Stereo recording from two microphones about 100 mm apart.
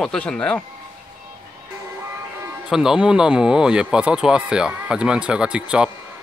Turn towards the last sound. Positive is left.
turn(degrees=-10)  # may be behind; listen again after turning